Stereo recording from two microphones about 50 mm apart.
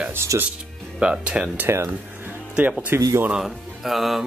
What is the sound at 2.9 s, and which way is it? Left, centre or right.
Speech, right.